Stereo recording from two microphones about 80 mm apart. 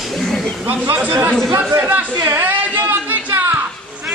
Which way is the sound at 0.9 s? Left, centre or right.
Right.